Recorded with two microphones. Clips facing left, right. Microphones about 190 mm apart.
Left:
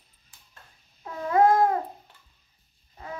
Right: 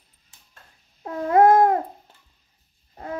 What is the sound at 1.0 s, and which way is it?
Cat, 50° right (ahead or behind).